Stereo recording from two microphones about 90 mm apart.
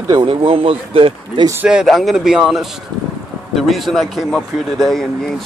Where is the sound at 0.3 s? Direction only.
90° right.